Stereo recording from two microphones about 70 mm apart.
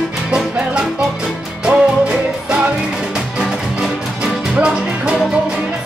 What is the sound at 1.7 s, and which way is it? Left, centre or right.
Music, centre.